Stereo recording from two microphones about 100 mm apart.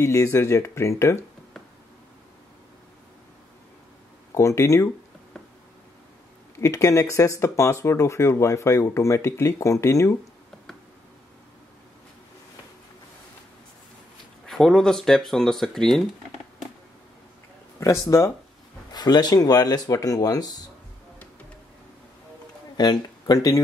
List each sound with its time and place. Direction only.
0.0 s speech: 30° left (ahead or behind)
4.4 s speech: 30° left (ahead or behind)
6.6 s speech: 30° left (ahead or behind)
14.4 s speech: 5° left (ahead or behind)
17.7 s speech: 30° left (ahead or behind)
22.8 s speech: 45° left (ahead or behind)